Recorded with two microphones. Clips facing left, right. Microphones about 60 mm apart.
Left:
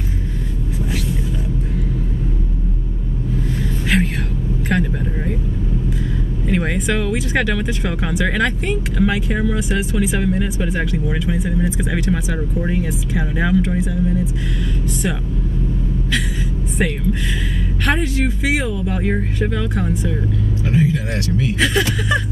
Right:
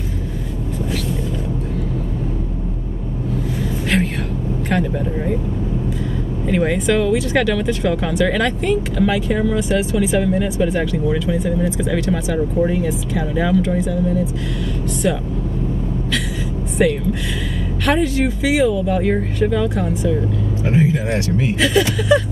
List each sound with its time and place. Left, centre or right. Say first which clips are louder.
3.9 s vehicle: even; centre
4.6 s speech: right 1 dB; centre
6.5 s speech: right 3 dB; centre
15.0 s speech: right 5 dB; centre
16.8 s speech: right 4 dB; centre
20.6 s speech: right 2 dB; right
21.5 s speech: right 3 dB; centre